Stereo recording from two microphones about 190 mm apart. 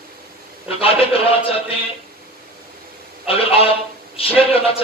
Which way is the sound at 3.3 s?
30° left (ahead or behind).